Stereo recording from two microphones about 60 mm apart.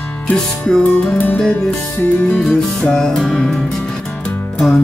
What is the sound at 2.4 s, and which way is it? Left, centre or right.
Music, centre.